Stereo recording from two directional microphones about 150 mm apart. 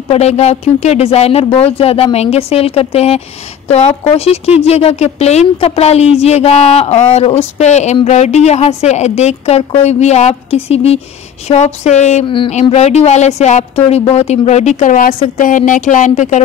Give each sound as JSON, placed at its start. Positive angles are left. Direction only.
{"t": 0.1, "sound": "a woman's voice", "side_deg": 45}